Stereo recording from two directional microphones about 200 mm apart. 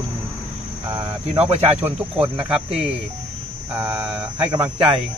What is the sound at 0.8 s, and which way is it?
Speech, 20° right (ahead or behind).